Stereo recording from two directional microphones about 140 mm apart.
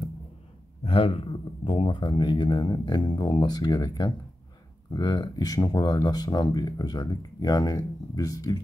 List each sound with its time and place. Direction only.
0.8 s speech: 40° left (ahead or behind); by 8.5 s 25° left (ahead or behind)